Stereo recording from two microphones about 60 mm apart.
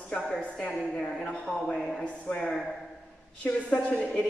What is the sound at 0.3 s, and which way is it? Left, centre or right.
Speech, centre.